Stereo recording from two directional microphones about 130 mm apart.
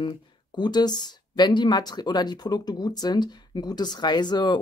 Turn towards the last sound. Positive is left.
turn(degrees=35)  # may be behind; listen again after turning